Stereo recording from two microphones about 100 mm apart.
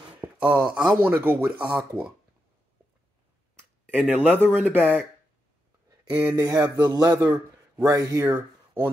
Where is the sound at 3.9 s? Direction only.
15° right (ahead or behind).